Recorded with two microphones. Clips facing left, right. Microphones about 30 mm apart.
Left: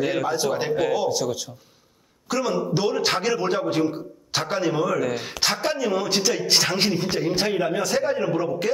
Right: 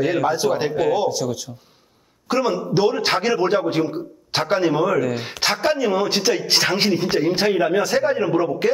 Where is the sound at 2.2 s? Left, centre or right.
Right.